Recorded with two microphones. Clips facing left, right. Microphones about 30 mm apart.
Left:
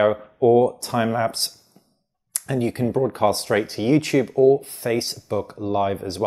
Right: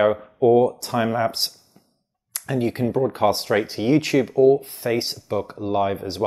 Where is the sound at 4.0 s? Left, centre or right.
Centre.